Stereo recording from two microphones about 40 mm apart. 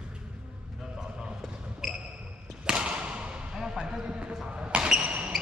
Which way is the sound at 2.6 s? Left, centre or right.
Right.